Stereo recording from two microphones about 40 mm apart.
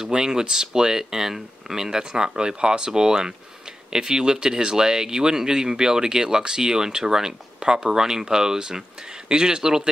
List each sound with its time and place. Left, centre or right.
0.1 s speech: centre